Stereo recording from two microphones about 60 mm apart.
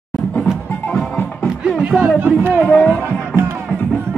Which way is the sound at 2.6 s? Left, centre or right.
Centre.